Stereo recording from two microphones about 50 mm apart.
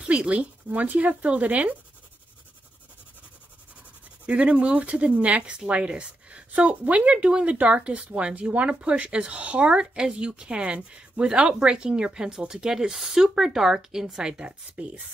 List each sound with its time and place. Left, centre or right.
0.0 s speech: right
4.3 s speech: right